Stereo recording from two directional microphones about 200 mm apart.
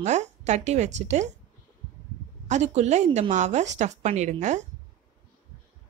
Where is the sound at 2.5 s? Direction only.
35° right (ahead or behind).